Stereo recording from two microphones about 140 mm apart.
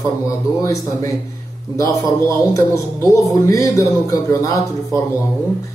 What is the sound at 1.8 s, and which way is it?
Speech, 20° left (ahead or behind).